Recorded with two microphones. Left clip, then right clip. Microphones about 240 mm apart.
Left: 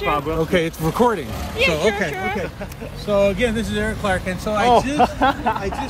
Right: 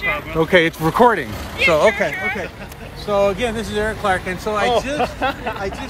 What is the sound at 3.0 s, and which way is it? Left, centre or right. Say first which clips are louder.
Speech: even; centre.